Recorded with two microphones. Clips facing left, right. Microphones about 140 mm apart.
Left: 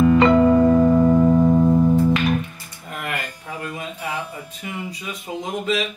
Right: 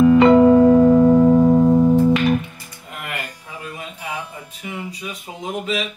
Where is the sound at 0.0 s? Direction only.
10° right (ahead or behind).